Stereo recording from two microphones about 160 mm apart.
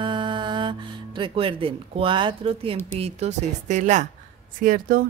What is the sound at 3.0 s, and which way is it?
Speech, 45° right (ahead or behind).